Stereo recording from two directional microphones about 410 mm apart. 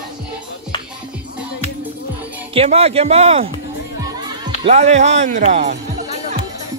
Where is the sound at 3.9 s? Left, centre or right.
Centre.